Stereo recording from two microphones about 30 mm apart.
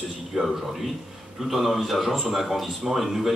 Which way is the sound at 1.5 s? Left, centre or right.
Centre.